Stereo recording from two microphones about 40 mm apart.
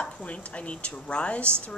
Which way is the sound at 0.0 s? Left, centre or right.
Left.